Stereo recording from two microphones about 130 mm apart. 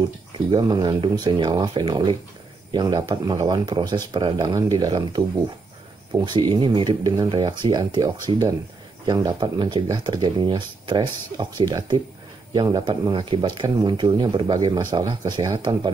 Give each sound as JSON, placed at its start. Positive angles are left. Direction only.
{"t": 0.5, "sound": "speech", "side_deg": -35}
{"t": 6.1, "sound": "speech", "side_deg": -35}
{"t": 12.8, "sound": "speech", "side_deg": -40}